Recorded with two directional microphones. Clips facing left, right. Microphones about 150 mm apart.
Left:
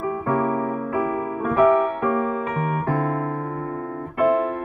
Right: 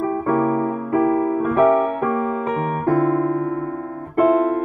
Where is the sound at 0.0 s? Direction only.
40° right (ahead or behind).